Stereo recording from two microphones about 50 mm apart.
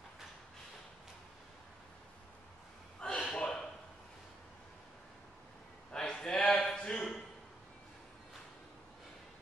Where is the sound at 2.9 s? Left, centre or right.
Left.